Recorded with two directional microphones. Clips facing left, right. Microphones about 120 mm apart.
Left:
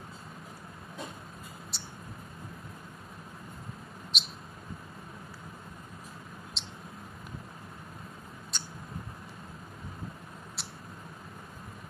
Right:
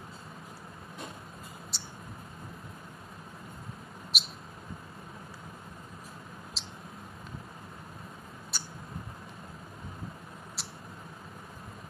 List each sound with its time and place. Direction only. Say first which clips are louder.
1.7 s mouse: even; centre (ahead or behind)
4.1 s mouse: right 1 dB; 5° right (ahead or behind)
6.6 s mouse: even; centre (ahead or behind)
8.5 s a sound: even; 5° right (ahead or behind)
10.6 s mouse: left 1 dB; centre (ahead or behind)